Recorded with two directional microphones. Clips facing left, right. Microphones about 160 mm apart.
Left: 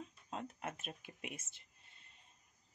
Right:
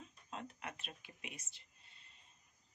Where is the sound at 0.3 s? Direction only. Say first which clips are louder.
Left 3 dB; 40° left (ahead or behind).